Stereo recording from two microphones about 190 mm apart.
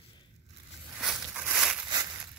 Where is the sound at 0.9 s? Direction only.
5° right (ahead or behind).